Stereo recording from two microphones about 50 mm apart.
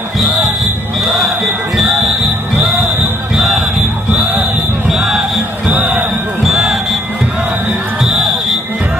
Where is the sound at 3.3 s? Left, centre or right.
Centre.